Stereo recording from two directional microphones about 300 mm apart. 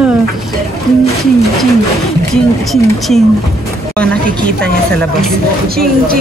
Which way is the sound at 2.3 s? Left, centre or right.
Centre.